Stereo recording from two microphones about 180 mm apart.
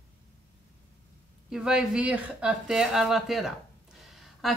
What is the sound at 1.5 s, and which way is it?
Speech, 5° right (ahead or behind).